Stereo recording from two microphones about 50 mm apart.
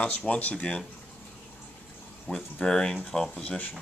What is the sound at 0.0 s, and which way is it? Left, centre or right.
Speech, left.